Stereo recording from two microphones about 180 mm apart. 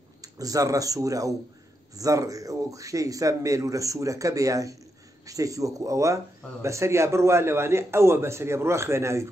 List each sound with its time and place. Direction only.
0.2 s speech: 20° right (ahead or behind)